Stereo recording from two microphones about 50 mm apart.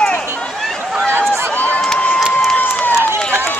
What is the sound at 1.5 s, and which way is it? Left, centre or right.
Crowd, left.